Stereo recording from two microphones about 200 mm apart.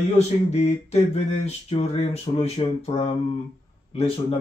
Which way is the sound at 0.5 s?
30° left (ahead or behind).